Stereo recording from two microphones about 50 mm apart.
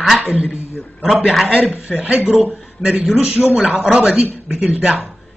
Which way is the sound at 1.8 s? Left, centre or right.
Right.